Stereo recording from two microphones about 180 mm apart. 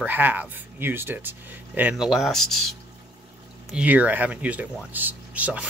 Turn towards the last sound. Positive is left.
turn(degrees=-5)  # may be behind; listen again after turning